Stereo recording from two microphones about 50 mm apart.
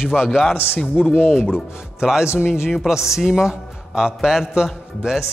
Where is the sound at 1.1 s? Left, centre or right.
Centre.